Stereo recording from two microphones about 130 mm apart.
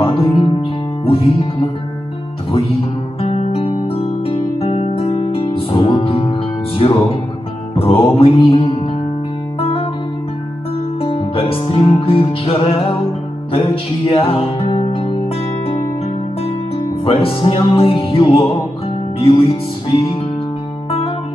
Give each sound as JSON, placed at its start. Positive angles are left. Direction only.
{"t": 0.0, "sound": "music", "side_deg": 40}
{"t": 3.2, "sound": "music", "side_deg": 55}
{"t": 11.0, "sound": "music", "side_deg": 45}
{"t": 17.0, "sound": "music", "side_deg": 45}